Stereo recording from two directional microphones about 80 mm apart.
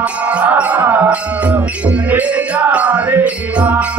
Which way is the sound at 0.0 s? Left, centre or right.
Centre.